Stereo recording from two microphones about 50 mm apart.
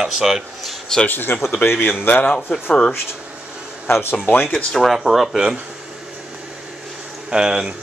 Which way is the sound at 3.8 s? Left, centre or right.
Left.